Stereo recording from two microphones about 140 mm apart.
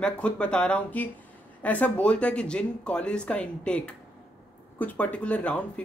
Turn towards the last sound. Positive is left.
turn(degrees=10)  # may be behind; listen again after turning